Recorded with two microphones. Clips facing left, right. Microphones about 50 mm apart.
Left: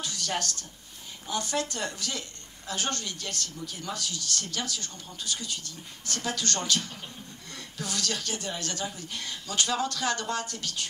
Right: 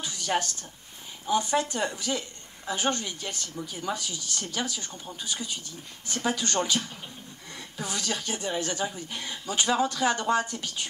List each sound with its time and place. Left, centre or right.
0.0 s a woman's voice: centre